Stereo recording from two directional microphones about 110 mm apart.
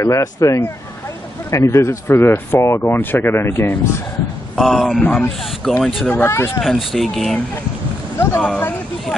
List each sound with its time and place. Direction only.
0.0 s speech: 30° left (ahead or behind)
4.6 s speech: centre (ahead or behind)
5.0 s speech: 15° left (ahead or behind)
5.4 s speech: centre (ahead or behind)
6.0 s speech: 20° left (ahead or behind)
6.6 s speech: centre (ahead or behind)
8.4 s speech: 15° left (ahead or behind)